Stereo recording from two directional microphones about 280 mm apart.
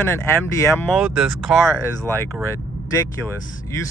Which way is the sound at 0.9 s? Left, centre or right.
Centre.